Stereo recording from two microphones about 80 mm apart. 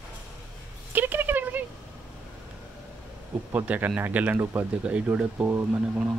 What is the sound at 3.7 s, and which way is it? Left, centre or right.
Speech, right.